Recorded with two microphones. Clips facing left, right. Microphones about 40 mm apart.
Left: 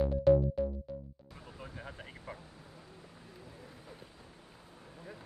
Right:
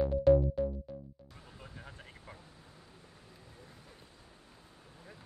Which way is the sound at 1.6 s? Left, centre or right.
Centre.